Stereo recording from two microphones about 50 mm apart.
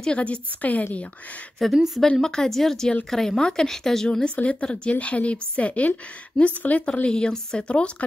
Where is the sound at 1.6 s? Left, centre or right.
Centre.